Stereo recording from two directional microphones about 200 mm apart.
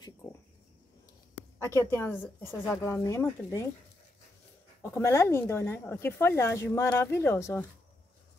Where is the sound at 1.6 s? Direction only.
15° left (ahead or behind).